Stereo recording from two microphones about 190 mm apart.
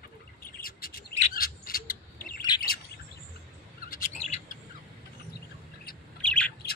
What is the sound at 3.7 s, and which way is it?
Bird, 50° left (ahead or behind).